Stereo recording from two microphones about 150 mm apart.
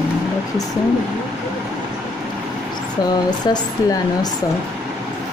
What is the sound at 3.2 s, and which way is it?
Speech, 25° left (ahead or behind).